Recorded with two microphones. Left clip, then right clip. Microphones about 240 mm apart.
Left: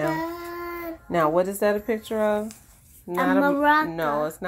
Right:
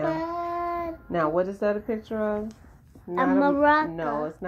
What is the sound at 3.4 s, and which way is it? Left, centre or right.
Speech, left.